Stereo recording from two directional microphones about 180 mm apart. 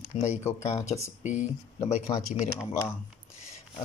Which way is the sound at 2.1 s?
25° left (ahead or behind).